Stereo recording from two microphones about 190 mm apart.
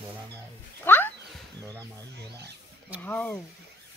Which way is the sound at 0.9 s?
10° left (ahead or behind).